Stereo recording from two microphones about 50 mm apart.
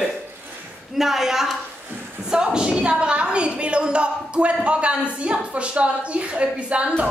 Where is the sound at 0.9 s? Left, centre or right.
Centre; by 6.9 s right.